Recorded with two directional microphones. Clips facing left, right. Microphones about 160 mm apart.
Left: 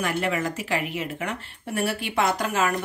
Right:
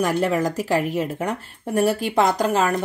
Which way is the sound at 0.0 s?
40° right (ahead or behind).